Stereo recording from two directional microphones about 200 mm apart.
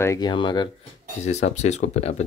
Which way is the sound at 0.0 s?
20° left (ahead or behind).